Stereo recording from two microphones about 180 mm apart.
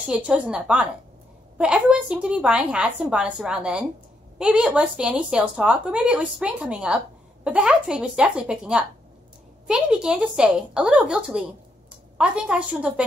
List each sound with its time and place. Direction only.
0.1 s a woman's voice: 5° right (ahead or behind)